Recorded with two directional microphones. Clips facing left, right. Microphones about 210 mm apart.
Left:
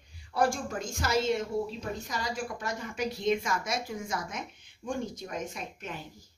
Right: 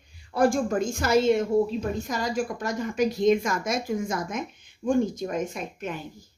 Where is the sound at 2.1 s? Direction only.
45° right (ahead or behind).